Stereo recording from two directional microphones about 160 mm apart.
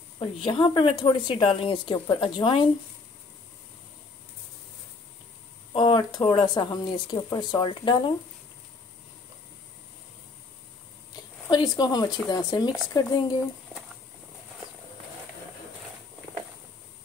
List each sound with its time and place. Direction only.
0.2 s a woman's voice: 35° left (ahead or behind)
5.7 s speech: 30° left (ahead or behind)
11.4 s speech: 25° left (ahead or behind)